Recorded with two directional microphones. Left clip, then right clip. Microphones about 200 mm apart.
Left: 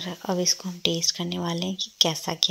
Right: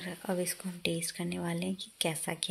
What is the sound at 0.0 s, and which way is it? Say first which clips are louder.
Speech: left 9 dB; 15° left (ahead or behind).